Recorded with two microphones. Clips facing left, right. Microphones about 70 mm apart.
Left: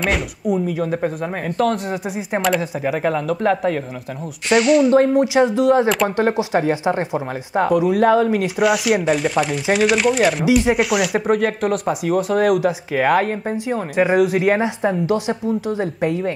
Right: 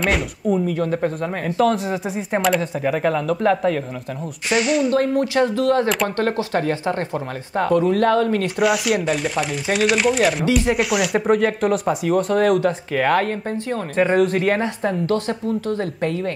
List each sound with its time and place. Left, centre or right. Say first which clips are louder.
0.0 s speech: even; centre
4.9 s speech: left 4 dB; left
8.5 s speech: left 2 dB; centre
10.4 s speech: left 3 dB; centre
10.7 s speech: left 2 dB; centre